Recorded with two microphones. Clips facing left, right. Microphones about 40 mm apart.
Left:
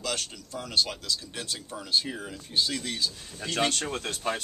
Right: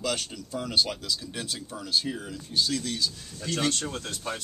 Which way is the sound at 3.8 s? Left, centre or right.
Left.